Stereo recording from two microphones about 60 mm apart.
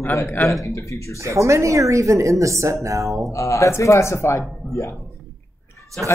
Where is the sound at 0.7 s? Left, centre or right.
Left.